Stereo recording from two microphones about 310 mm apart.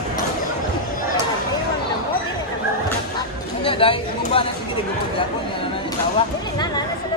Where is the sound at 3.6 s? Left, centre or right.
Centre.